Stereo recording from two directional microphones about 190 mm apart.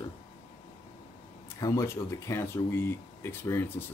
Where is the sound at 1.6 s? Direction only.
15° left (ahead or behind).